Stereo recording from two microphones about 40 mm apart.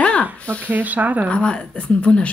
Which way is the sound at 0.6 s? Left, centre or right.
Right.